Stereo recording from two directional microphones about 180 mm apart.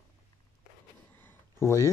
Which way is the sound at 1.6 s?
15° left (ahead or behind).